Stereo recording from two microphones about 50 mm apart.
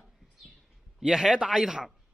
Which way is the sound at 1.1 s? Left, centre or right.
Centre.